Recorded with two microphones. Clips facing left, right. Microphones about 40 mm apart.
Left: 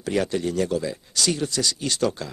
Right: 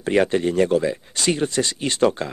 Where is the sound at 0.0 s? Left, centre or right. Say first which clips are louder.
Right 5 dB; right.